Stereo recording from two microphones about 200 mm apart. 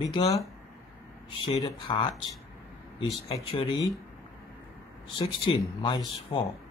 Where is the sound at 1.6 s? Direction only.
20° left (ahead or behind).